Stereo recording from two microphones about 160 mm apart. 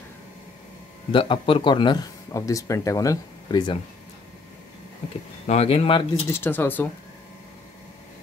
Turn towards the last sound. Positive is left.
turn(degrees=10)  # may be behind; listen again after turning